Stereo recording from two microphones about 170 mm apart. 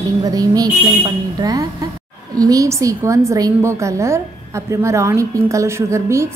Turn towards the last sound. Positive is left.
turn(degrees=-15)  # may be behind; listen again after turning